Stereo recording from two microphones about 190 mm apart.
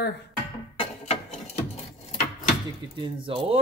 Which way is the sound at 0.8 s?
35° left (ahead or behind).